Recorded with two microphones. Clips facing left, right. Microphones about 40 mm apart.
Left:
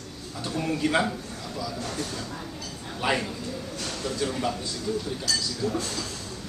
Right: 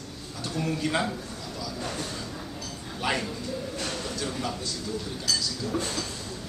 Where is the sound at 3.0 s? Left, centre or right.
Centre.